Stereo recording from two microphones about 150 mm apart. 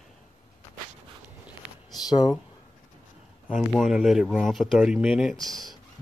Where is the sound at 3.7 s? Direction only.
Centre (ahead or behind).